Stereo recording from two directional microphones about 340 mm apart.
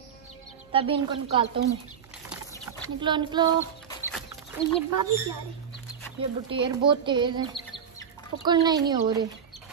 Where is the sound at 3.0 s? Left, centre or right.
Centre.